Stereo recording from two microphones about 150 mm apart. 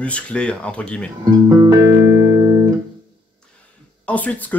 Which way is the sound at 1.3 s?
25° right (ahead or behind).